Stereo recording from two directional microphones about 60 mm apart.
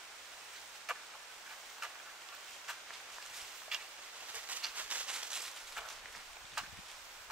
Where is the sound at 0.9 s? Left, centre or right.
Centre.